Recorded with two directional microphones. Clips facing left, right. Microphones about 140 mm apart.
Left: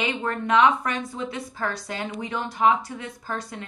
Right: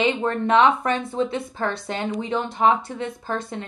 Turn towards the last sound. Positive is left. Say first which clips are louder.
# right 4 dB
turn(degrees=-25)  # may be behind; listen again after turning